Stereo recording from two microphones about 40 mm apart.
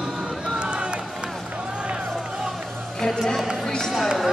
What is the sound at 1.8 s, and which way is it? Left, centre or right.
Music, right.